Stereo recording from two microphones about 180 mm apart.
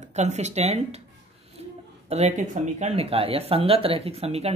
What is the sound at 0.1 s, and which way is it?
Speech, 40° right (ahead or behind).